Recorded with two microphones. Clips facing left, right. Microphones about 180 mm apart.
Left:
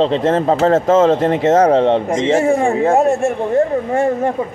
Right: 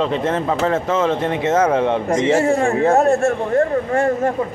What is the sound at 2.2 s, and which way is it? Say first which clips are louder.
A man's voice: left 2 dB; 20° left (ahead or behind).